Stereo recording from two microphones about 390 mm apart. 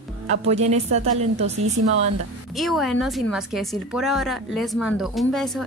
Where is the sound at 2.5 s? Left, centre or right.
Centre.